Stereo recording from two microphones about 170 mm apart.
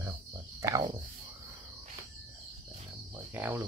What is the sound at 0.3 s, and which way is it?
Cricket, 20° right (ahead or behind).